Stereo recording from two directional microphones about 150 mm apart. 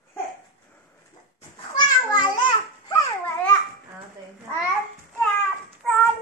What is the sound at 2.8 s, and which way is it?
Babbling, 20° left (ahead or behind).